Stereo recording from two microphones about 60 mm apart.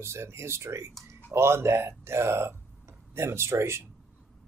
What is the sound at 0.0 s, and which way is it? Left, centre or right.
Speech, right.